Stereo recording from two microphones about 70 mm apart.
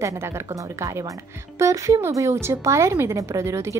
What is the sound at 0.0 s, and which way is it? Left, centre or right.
A woman's voice, right.